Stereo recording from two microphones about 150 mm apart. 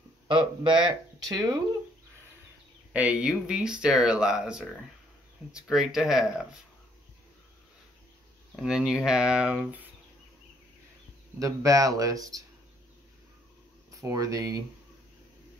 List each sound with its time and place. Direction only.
0.3 s speech: 35° right (ahead or behind)
2.9 s speech: 10° right (ahead or behind)
8.5 s speech: 5° right (ahead or behind)
11.3 s speech: 20° right (ahead or behind)
14.0 s speech: 20° right (ahead or behind)